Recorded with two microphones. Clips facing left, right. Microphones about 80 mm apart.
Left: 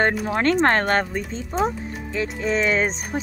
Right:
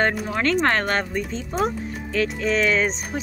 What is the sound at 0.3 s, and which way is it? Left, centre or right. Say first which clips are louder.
A woman's voice: left 2 dB; left.